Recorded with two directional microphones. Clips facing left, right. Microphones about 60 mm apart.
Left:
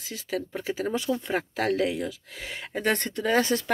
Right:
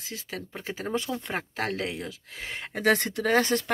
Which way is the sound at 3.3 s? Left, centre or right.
Right.